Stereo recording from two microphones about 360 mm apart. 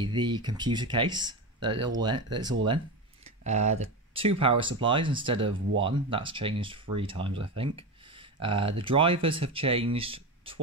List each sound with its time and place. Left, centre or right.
0.0 s speech: centre
3.3 s tick: centre
3.8 s speech: centre